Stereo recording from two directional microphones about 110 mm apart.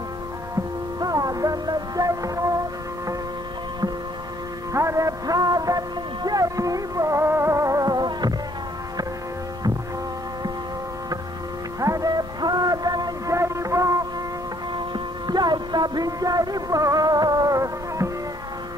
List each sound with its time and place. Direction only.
0.9 s music: 35° right (ahead or behind)
4.7 s music: 30° right (ahead or behind)
11.8 s music: 30° right (ahead or behind)
15.2 s music: 40° right (ahead or behind)